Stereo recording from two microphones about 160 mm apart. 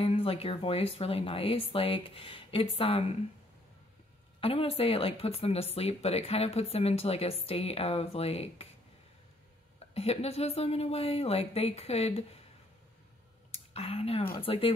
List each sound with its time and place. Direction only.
0.0 s speech: 35° left (ahead or behind)
4.4 s speech: 35° left (ahead or behind)
9.9 s speech: 40° left (ahead or behind)
13.5 s a sound: 40° left (ahead or behind)
14.4 s speech: 35° left (ahead or behind)